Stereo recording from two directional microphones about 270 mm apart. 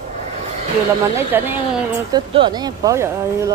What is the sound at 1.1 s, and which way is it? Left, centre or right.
Speech, centre.